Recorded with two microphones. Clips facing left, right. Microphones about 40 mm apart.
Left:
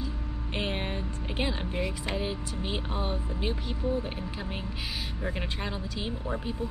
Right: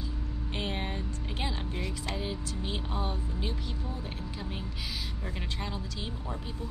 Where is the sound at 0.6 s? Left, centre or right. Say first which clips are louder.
Left 3 dB; left.